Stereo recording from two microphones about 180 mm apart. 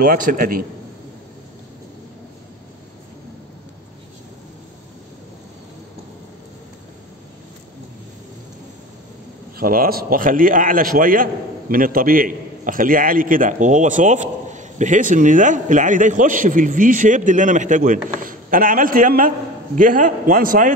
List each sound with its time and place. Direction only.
0.0 s a man's voice: 50° right (ahead or behind)
9.6 s a man's voice: 55° right (ahead or behind)